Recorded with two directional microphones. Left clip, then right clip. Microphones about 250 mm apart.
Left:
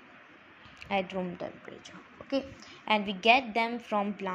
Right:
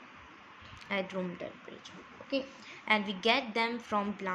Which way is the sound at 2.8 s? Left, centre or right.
Centre.